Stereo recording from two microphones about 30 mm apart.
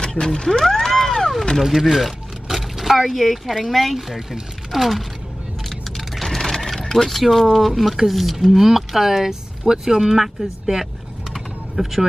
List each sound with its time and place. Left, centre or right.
0.0 s cat: left
1.6 s speech: centre
6.2 s speech: centre
11.3 s typing: centre